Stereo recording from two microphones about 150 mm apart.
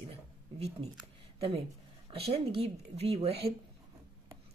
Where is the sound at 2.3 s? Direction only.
40° right (ahead or behind).